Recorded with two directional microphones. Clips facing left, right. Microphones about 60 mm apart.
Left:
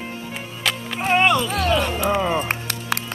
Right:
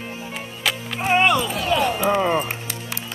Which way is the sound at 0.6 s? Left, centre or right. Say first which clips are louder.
Even; centre.